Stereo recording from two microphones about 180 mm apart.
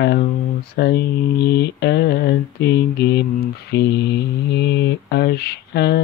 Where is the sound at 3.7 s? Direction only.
70° left (ahead or behind).